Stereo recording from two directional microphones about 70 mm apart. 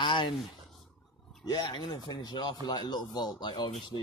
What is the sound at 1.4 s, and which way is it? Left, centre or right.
Speech, left.